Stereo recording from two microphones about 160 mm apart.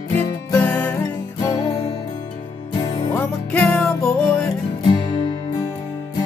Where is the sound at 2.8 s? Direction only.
25° left (ahead or behind).